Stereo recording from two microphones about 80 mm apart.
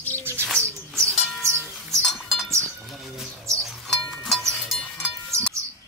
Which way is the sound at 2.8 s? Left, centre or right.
Centre.